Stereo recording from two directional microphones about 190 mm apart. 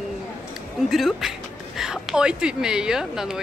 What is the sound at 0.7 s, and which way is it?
Speech, centre (ahead or behind).